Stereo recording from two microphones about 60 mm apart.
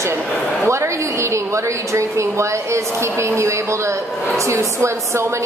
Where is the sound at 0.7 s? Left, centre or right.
Right.